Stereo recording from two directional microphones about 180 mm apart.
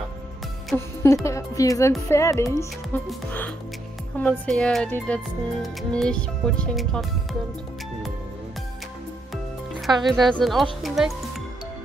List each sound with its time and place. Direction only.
1.0 s speech: 15° left (ahead or behind); by 7.1 s centre (ahead or behind)
9.8 s speech: centre (ahead or behind)